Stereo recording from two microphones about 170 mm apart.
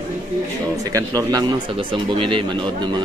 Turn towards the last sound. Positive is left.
turn(degrees=-25)  # may be behind; listen again after turning